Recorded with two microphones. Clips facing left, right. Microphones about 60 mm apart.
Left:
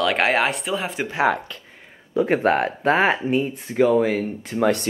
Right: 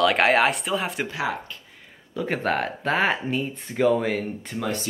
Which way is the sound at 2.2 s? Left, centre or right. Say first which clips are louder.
Left 5 dB; centre.